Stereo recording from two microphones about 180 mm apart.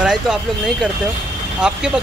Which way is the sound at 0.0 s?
5° right (ahead or behind).